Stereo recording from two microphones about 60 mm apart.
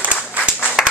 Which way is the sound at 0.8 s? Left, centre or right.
Centre.